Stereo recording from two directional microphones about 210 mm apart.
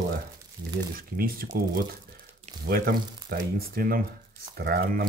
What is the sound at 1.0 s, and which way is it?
Speech, 45° right (ahead or behind).